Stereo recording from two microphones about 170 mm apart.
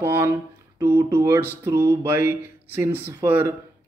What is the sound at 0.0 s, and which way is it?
Speech, 10° right (ahead or behind).